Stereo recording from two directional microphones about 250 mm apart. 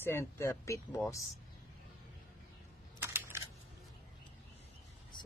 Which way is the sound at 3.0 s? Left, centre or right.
Centre.